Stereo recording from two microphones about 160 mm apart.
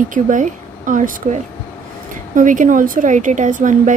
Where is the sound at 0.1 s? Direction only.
55° right (ahead or behind).